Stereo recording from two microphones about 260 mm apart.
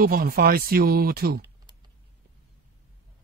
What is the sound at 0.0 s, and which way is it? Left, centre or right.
Speech, right.